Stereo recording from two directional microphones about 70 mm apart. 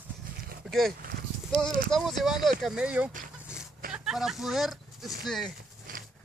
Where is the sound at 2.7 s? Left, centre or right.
Centre.